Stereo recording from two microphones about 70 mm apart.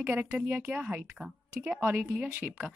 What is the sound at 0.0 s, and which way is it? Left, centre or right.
Speech, right.